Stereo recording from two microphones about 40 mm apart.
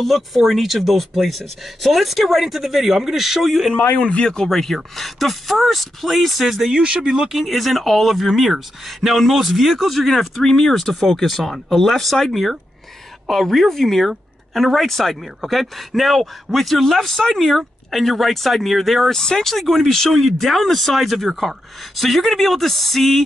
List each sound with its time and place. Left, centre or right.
0.0 s speech: centre
3.7 s speech: left
4.0 s speech: left; by 6.7 s centre
6.8 s speech: right
7.2 s speech: centre